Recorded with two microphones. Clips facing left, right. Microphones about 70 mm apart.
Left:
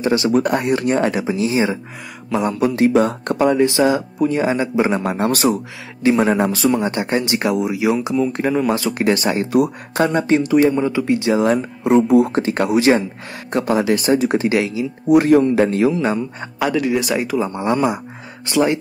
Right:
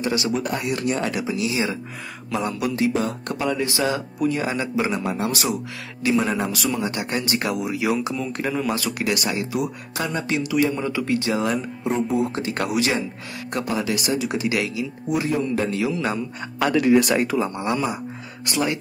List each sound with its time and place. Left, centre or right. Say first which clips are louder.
0.0 s speech: left 6 dB; left
0.3 s speech: left 8 dB; left
2.9 s speech: left 8 dB; left
4.9 s speech: left 6 dB; left
6.0 s speech: left 6 dB; left
9.5 s speech: left 9 dB; left
10.8 s speech: left 6 dB; left
11.8 s speech: left 10 dB; left
12.3 s speech: left 7 dB; left
15.0 s speech: left 12 dB; left
15.4 s speech: left 8 dB; left
16.0 s speech: left 5 dB; left
16.7 s speech: right 3 dB; centre
18.4 s speech: left 7 dB; left